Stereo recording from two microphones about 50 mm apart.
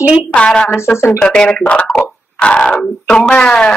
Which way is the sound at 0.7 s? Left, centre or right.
Left.